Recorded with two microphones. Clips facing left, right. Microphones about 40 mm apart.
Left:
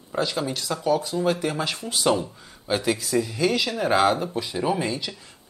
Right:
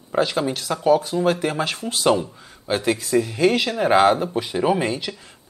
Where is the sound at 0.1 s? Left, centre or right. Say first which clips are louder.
Right 5 dB; right.